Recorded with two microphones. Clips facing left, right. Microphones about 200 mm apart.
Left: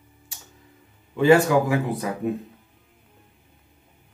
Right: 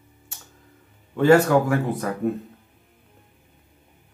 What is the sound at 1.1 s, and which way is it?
Mantra, 5° left (ahead or behind).